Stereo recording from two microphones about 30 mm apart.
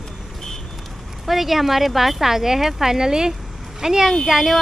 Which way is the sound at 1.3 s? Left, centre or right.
Centre.